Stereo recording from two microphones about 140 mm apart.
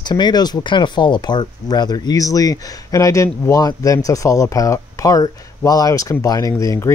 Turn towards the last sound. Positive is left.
turn(degrees=20)  # may be behind; listen again after turning